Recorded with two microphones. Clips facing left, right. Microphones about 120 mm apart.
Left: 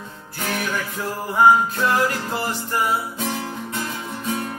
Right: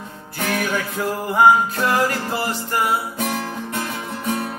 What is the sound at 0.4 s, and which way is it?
Music, 55° right (ahead or behind).